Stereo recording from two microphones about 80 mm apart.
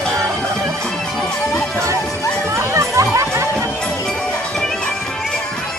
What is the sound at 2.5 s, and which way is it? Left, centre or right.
Music, right.